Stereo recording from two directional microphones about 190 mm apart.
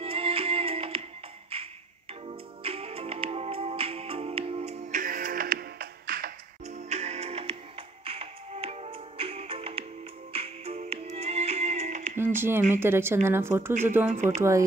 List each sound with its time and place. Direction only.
0.0 s music: 30° right (ahead or behind)
5.0 s music: 50° right (ahead or behind)
6.9 s music: 35° right (ahead or behind)
12.2 s a woman's voice: 10° right (ahead or behind)